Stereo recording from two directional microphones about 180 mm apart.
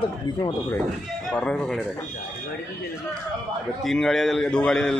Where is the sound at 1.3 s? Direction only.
5° left (ahead or behind).